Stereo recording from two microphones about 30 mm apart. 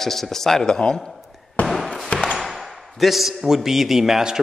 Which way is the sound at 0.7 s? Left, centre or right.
Left.